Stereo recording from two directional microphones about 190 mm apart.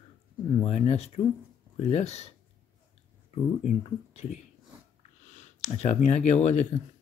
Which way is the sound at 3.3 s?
35° left (ahead or behind).